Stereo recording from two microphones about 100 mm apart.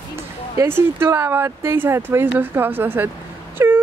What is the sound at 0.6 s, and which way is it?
Speech, 25° right (ahead or behind).